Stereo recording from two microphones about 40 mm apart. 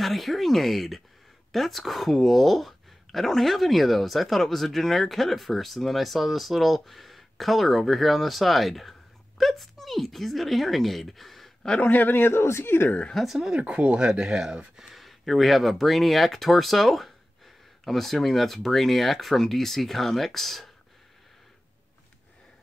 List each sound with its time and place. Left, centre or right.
0.0 s speech: centre
11.8 s a man's voice: left
13.1 s speech: centre
13.6 s speech: right
14.8 s speech: centre